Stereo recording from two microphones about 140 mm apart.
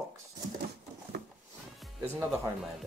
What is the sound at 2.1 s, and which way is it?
Speech, 20° right (ahead or behind).